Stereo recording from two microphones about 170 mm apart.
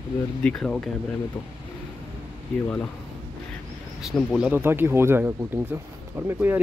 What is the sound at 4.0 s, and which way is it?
Speech, centre (ahead or behind).